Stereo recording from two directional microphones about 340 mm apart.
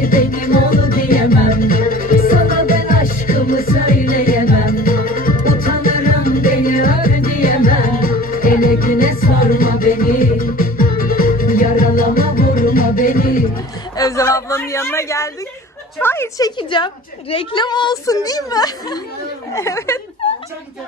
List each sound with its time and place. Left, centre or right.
0.0 s music: left
13.9 s a sound: centre
16.0 s a woman's voice: centre